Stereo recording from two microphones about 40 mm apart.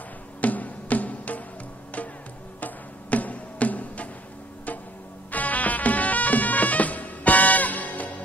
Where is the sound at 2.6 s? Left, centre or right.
Left.